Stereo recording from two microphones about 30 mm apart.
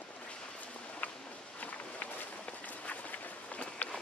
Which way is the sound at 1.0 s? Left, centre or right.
Left.